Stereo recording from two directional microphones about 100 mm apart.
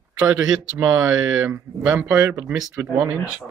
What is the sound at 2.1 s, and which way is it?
Speech, 30° right (ahead or behind).